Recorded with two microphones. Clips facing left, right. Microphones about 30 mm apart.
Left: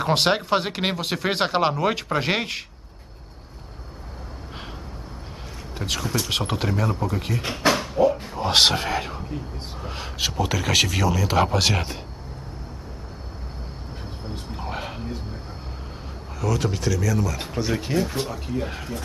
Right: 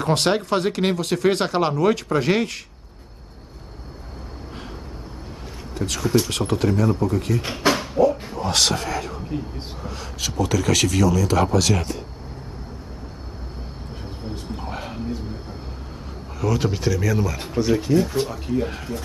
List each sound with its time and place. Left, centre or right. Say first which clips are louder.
0.0 s speech: right 1 dB; centre
5.8 s speech: right 5 dB; centre
7.4 s a sound: right 1 dB; centre
8.4 s speech: left 4 dB; left
14.3 s a sound: even; centre
16.3 s speech: right 2 dB; centre
17.4 s speech: right 5 dB; centre